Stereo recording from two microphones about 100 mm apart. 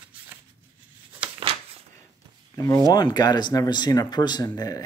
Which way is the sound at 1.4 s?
80° right.